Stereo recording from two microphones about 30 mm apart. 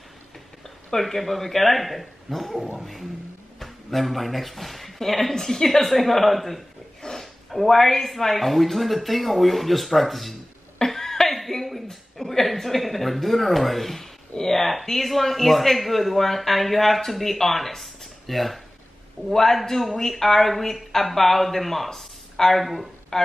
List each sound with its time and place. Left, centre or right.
0.9 s speech: centre
7.0 s wild animals: centre
7.5 s speech: centre
10.9 s cough: centre
11.5 s a sound: centre
14.3 s speech: centre
19.3 s speech: centre
23.1 s speech: centre